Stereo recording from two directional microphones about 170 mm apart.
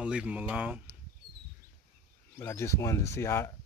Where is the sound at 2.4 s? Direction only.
15° left (ahead or behind).